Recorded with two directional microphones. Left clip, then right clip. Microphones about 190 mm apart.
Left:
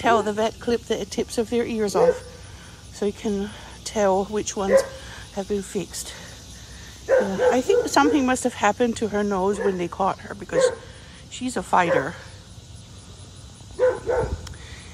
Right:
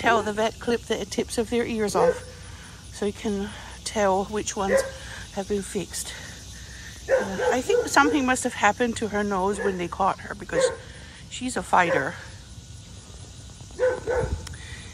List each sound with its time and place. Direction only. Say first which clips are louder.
0.0 s speech: left 2 dB; 10° left (ahead or behind)
1.0 s speech: left 1 dB; 15° left (ahead or behind)
7.1 s speech: left 4 dB; 40° left (ahead or behind)
7.4 s speech: left 3 dB; 15° left (ahead or behind)
13.7 s bow-wow: left 3 dB; 35° left (ahead or behind)